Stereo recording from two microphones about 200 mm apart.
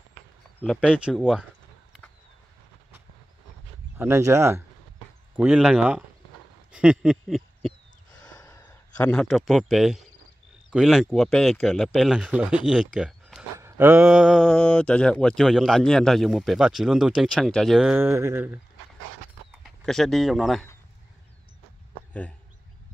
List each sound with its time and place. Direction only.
0.6 s speech: 5° left (ahead or behind)
0.8 s speech: 5° right (ahead or behind)
4.0 s speech: 15° right (ahead or behind)
6.7 s a sound: 5° right (ahead or behind)
8.4 s a sound: 15° left (ahead or behind)
9.1 s speech: centre (ahead or behind)
12.9 s a sound: centre (ahead or behind)
13.6 s speech: 10° right (ahead or behind)
17.9 s speech: 10° right (ahead or behind)
19.8 s speech: centre (ahead or behind)